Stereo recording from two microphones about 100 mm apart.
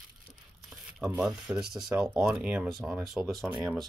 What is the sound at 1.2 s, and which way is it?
Speech, 5° right (ahead or behind).